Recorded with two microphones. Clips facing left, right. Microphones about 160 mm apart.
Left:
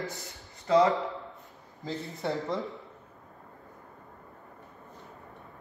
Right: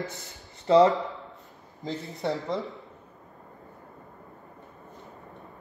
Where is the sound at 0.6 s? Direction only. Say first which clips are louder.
Right 4 dB; 35° right (ahead or behind).